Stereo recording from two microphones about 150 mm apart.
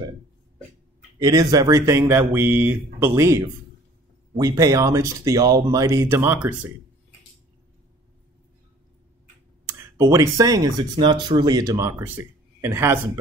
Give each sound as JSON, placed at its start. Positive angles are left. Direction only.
{"t": 1.2, "sound": "speech", "side_deg": -25}
{"t": 9.9, "sound": "speech", "side_deg": -20}